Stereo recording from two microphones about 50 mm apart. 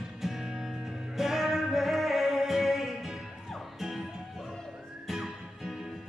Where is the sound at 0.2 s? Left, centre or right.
Centre.